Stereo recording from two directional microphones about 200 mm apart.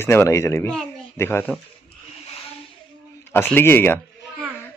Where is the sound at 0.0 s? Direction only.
10° left (ahead or behind).